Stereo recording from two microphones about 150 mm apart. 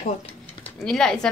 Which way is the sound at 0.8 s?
5° left (ahead or behind).